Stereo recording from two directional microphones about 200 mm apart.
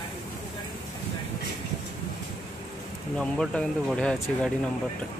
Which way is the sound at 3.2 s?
5° left (ahead or behind).